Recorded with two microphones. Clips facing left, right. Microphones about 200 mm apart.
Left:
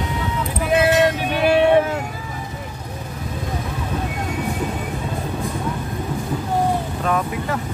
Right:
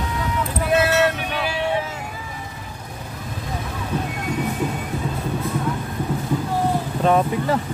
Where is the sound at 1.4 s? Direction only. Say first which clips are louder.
Left 10 dB; 60° left (ahead or behind).